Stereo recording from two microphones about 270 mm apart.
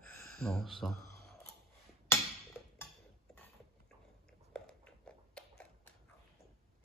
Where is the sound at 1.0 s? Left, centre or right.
Right.